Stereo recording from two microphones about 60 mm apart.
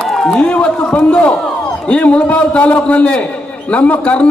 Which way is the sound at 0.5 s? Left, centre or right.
Centre.